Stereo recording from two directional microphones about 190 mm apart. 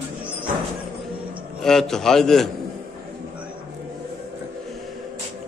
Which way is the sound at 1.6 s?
Centre (ahead or behind).